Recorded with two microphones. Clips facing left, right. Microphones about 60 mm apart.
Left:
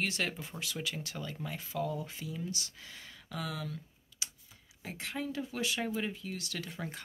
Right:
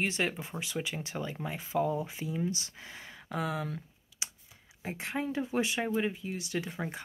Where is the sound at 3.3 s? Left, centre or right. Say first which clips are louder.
Right 5 dB; right.